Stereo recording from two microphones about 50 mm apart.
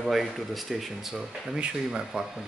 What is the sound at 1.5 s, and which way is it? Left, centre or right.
Speech, centre.